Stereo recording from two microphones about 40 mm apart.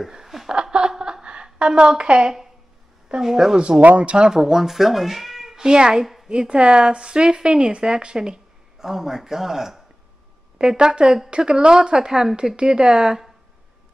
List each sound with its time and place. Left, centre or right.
0.1 s speech: centre
0.5 s a sound: right
1.7 s a woman's voice: right
3.2 s speech: centre
3.8 s speech: right
4.2 s speech: centre
5.6 s a woman's voice: centre